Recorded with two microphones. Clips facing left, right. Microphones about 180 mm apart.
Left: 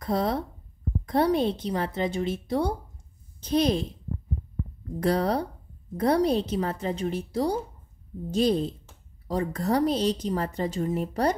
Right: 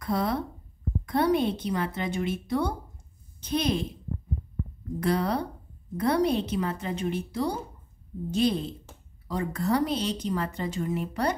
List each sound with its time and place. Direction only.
0.0 s speech: 35° left (ahead or behind)
5.0 s speech: 35° left (ahead or behind)